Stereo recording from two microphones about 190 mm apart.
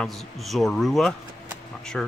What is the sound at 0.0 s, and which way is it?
Speech, centre (ahead or behind).